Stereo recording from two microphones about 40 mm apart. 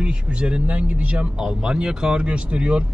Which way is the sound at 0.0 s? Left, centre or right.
Right.